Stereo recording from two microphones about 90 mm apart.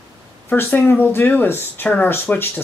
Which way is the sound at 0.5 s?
20° left (ahead or behind).